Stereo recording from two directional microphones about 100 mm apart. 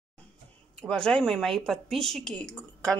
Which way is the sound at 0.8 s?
5° left (ahead or behind).